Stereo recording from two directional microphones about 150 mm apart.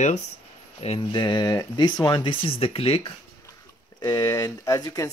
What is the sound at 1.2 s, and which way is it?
Speech, 25° left (ahead or behind).